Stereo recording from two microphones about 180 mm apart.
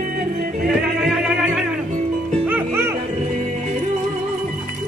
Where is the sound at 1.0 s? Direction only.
Centre (ahead or behind).